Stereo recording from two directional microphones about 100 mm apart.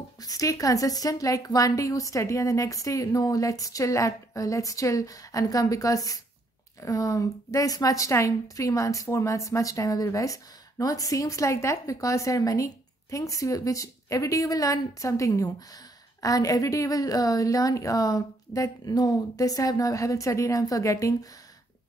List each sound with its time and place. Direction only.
0.2 s a woman's voice: 35° left (ahead or behind)